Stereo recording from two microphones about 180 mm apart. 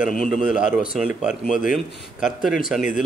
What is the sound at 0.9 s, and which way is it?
Speech, 5° right (ahead or behind).